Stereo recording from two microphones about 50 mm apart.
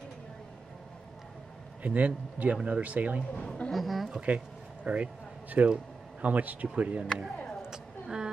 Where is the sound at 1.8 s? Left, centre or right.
Right.